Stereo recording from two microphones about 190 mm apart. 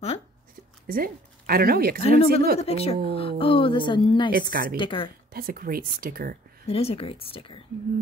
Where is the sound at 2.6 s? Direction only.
30° left (ahead or behind).